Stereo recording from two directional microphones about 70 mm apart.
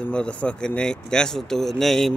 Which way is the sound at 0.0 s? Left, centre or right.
Centre.